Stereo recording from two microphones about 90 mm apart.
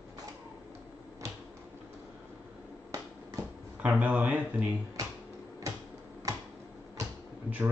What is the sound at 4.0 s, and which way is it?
Speech, 20° right (ahead or behind).